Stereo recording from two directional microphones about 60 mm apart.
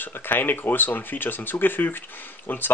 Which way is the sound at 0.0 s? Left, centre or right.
Left.